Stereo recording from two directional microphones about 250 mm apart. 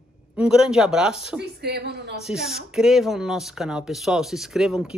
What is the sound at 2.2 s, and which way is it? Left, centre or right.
Speech, centre.